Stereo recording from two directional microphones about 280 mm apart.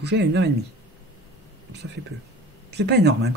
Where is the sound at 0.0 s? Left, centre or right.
Right.